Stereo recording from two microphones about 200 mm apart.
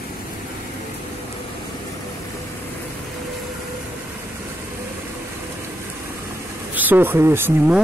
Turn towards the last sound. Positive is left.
turn(degrees=-10)  # may be behind; listen again after turning